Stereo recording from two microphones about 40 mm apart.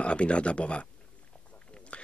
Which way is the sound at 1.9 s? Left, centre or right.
Left.